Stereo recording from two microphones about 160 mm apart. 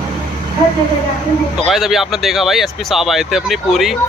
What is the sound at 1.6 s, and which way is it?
Speech, centre (ahead or behind).